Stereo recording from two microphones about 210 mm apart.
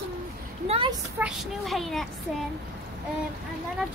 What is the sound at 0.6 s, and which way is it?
Speech, 25° right (ahead or behind).